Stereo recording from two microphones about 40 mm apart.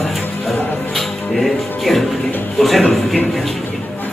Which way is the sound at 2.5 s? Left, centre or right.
Centre.